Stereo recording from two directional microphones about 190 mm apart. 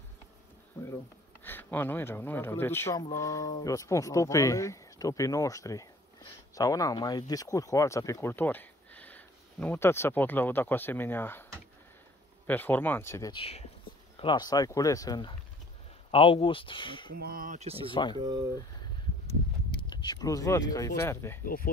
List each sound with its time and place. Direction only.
1.4 s speech: 10° left (ahead or behind)
12.4 s speech: 10° left (ahead or behind)
13.3 s speech: 30° left (ahead or behind)
17.1 s speech: 50° right (ahead or behind); by 18.4 s 20° right (ahead or behind)
19.9 s speech: 20° left (ahead or behind)